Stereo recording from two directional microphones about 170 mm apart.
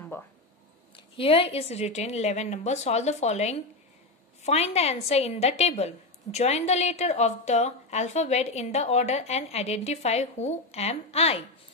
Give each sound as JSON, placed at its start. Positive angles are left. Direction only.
{"t": 0.1, "sound": "speech", "side_deg": 15}
{"t": 0.9, "sound": "a woman's voice", "side_deg": 30}